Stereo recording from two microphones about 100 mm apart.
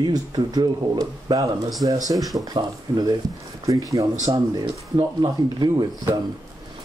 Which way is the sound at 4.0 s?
70° right (ahead or behind).